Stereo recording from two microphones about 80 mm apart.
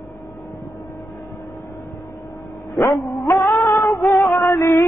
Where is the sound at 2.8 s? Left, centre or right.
Centre.